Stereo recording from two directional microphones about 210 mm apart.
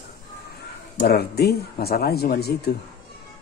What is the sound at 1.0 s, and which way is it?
Speech, 50° left (ahead or behind).